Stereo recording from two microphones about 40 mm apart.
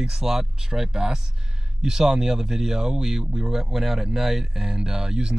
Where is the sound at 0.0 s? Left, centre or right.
Centre.